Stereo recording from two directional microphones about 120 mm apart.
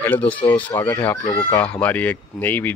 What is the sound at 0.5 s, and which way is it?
Speech, 15° left (ahead or behind).